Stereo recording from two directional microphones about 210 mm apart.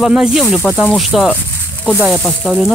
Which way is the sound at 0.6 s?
10° left (ahead or behind).